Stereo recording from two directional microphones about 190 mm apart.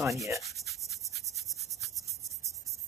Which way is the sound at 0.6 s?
Centre (ahead or behind).